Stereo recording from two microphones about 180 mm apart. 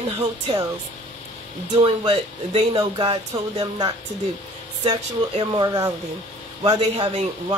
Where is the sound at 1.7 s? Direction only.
25° right (ahead or behind).